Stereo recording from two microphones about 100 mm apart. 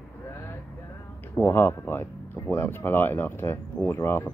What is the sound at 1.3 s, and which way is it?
Speech, 20° left (ahead or behind).